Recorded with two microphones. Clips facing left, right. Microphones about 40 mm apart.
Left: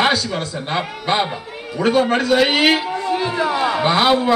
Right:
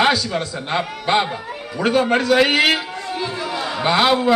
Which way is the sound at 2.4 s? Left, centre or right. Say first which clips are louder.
Left 1 dB; left.